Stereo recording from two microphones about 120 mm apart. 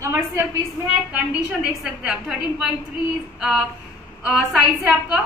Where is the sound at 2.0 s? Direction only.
5° right (ahead or behind).